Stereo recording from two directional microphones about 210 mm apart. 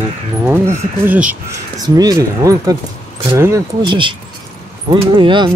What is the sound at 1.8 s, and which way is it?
Speech, 15° right (ahead or behind).